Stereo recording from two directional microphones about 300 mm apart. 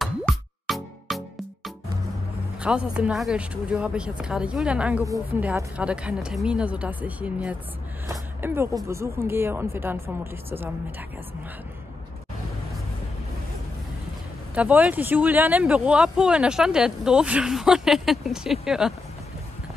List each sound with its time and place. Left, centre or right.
0.0 s music: centre
2.6 s speech: centre
14.5 s speech: centre